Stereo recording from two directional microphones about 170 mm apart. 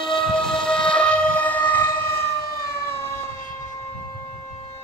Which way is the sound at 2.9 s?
15° left (ahead or behind).